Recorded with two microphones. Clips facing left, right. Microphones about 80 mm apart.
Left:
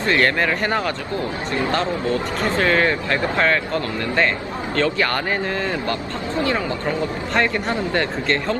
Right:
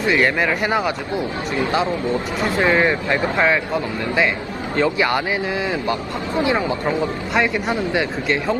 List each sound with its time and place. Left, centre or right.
0.0 s speech: centre
7.3 s speech: centre